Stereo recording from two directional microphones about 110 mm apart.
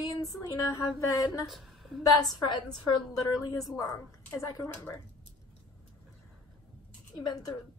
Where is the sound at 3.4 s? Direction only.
30° left (ahead or behind).